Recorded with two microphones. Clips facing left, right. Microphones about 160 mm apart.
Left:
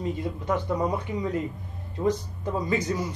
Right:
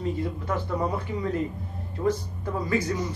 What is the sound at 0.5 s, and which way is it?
Speech, 15° left (ahead or behind).